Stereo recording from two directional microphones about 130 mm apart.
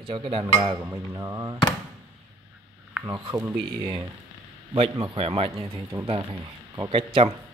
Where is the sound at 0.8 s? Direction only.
20° right (ahead or behind).